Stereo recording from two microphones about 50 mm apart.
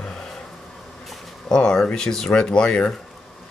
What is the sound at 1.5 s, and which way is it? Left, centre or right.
Speech, centre.